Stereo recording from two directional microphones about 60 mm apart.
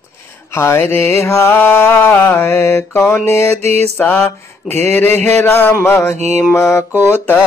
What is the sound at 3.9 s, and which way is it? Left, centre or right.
Mantra, left.